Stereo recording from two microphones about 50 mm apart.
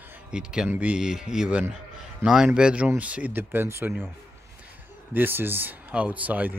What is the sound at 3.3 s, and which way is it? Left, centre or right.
Speech, right.